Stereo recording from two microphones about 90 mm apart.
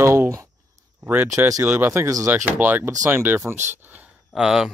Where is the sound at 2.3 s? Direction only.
20° right (ahead or behind).